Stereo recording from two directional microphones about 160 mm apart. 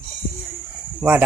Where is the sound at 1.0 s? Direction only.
10° right (ahead or behind).